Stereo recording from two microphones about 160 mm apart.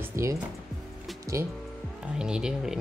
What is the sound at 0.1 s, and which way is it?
Speech, 20° right (ahead or behind).